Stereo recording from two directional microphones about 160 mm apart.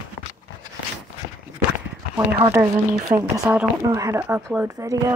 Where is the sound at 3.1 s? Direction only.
20° right (ahead or behind).